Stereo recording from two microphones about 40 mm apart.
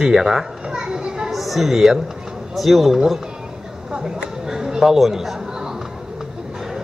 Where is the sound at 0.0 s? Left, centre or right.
Centre.